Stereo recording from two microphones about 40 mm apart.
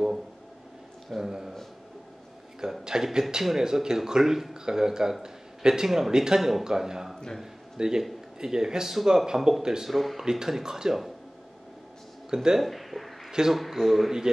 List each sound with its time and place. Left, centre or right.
1.1 s speech: centre
2.6 s speech: centre
5.2 s a sound: centre
5.9 s speech: centre
9.8 s a man's voice: centre
12.3 s speech: centre
12.5 s speech: centre
13.3 s speech: centre
13.6 s a man's voice: centre